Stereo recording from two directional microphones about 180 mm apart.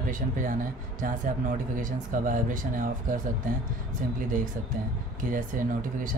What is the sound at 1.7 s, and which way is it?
Speech, 50° right (ahead or behind).